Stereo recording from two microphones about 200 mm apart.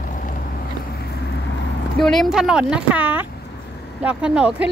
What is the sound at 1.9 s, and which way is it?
Speech, centre (ahead or behind).